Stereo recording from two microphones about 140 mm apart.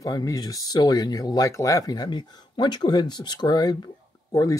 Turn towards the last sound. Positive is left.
turn(degrees=25)  # may be behind; listen again after turning